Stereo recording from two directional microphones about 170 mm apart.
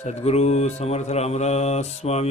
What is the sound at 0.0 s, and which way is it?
Mantra, 40° left (ahead or behind).